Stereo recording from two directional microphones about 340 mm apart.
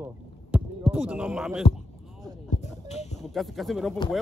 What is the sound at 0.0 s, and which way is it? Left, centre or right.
Heart sounds, centre.